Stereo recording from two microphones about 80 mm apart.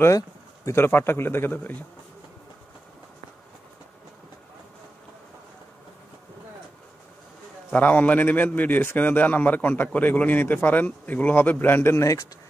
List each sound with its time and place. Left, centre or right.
0.7 s a man's voice: left
7.7 s a man's voice: centre; by 12.3 s left